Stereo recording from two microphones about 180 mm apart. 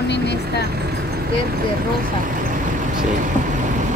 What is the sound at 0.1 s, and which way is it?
Vehicle, 70° left (ahead or behind).